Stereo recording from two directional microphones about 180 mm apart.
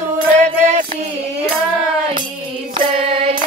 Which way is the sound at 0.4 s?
40° right (ahead or behind).